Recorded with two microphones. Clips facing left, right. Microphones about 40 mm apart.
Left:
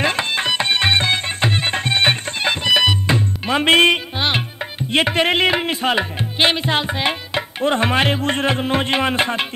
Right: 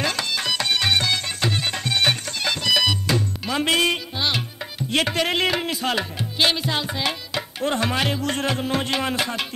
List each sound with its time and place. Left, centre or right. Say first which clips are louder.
0.0 s music: left 5 dB; left
4.9 s speech: left 5 dB; left